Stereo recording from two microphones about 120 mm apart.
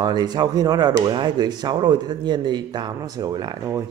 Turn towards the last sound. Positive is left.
turn(degrees=-35)  # may be behind; listen again after turning